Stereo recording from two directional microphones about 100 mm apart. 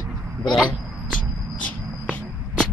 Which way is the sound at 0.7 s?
15° left (ahead or behind).